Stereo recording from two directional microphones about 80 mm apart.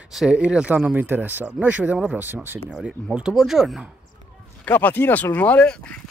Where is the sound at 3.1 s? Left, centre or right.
Centre.